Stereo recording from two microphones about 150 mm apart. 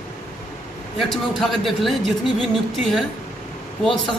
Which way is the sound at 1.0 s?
Centre (ahead or behind).